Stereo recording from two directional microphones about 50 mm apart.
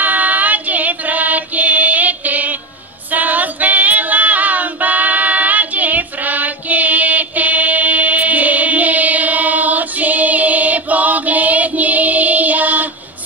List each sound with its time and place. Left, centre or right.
0.0 s female singing: right